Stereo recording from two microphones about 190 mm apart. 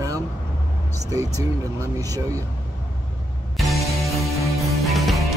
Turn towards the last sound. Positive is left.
turn(degrees=0)  # may be behind; listen again after turning